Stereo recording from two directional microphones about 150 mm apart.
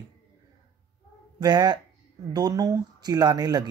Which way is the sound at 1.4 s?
30° right (ahead or behind).